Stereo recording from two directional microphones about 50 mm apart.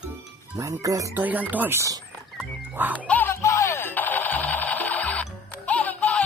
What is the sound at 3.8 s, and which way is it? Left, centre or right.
Music, left.